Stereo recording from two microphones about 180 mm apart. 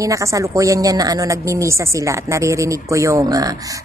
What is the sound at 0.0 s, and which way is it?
Speech, 15° right (ahead or behind).